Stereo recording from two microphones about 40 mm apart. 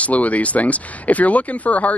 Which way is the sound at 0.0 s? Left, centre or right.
Left.